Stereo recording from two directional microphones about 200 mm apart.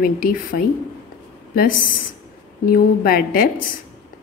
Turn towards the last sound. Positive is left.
turn(degrees=45)  # may be behind; listen again after turning